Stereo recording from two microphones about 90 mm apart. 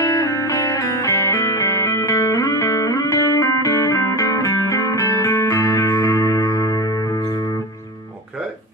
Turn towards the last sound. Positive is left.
turn(degrees=40)  # may be behind; listen again after turning